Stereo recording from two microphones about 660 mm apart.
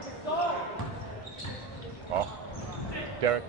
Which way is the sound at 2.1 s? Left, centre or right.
Right.